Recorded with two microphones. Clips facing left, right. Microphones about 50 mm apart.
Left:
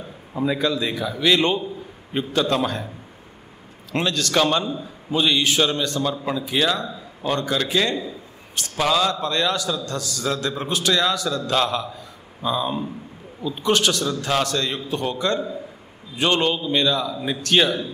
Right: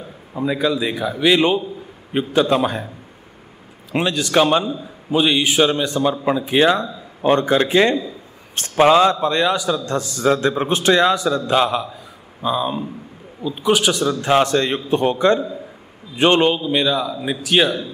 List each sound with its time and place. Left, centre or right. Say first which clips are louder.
0.3 s a man's voice: right 2 dB; centre
3.9 s a man's voice: right 4 dB; centre